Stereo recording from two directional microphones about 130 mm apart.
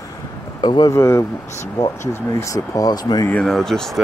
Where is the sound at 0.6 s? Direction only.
30° left (ahead or behind).